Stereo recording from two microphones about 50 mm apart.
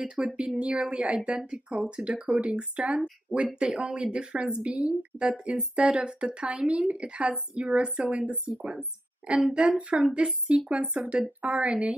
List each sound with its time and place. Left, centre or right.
0.0 s a woman's voice: right